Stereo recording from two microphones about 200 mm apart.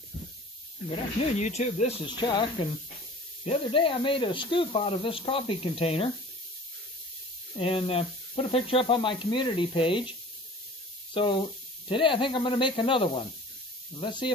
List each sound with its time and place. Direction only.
0.8 s speech: 30° left (ahead or behind)
2.0 s speech: 20° left (ahead or behind)
7.5 s speech: 25° left (ahead or behind)
11.9 s speech: 25° left (ahead or behind)